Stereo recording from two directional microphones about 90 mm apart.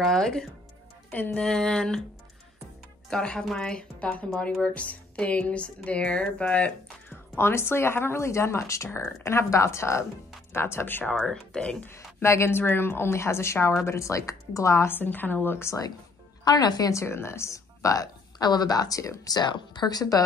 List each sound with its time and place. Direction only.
0.0 s speech: 5° left (ahead or behind)
1.1 s speech: 15° left (ahead or behind)
1.4 s speech: 5° left (ahead or behind)
3.1 s a woman's voice: 10° left (ahead or behind)
11.1 s speech: 10° left (ahead or behind)
11.8 s a woman's voice: 30° left (ahead or behind)
16.4 s a woman's voice: 50° left (ahead or behind)
17.0 s a woman's voice: 30° left (ahead or behind)